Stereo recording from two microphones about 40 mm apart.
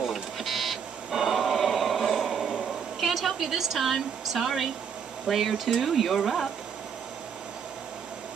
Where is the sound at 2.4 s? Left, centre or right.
Right.